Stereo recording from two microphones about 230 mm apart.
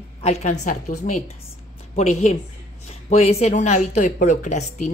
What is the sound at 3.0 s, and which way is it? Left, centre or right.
Speech, left.